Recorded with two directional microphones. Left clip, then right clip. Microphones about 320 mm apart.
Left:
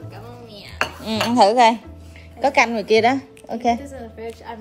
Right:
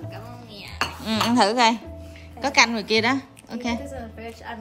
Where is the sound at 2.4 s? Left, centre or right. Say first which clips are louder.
Left 2 dB; centre.